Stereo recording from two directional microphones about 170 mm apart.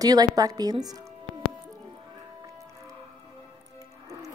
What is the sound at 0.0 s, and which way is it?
A woman's voice, 20° right (ahead or behind).